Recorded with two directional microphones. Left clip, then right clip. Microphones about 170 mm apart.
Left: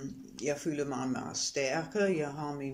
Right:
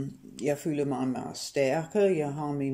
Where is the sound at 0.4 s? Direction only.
25° right (ahead or behind).